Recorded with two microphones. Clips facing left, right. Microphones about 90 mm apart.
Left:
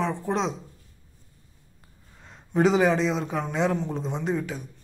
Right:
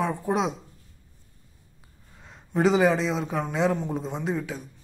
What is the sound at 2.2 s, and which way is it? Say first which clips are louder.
A man's voice: left 1 dB; centre (ahead or behind).